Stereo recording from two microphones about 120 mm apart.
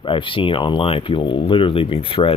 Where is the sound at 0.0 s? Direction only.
45° left (ahead or behind).